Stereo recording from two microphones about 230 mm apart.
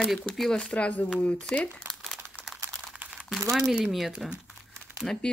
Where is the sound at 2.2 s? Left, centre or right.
Centre.